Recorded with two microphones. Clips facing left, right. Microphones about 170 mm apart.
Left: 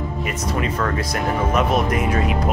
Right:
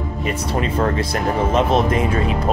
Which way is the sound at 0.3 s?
30° right (ahead or behind).